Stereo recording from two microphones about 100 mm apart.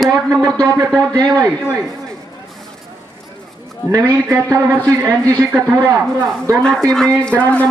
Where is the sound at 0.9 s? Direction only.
35° right (ahead or behind).